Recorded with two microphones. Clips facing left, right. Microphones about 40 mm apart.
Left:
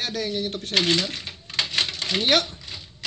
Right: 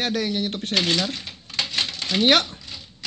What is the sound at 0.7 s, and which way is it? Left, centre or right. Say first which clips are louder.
Speech: left 1 dB; left.